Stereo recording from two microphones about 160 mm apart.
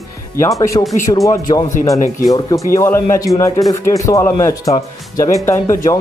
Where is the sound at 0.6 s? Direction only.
20° left (ahead or behind).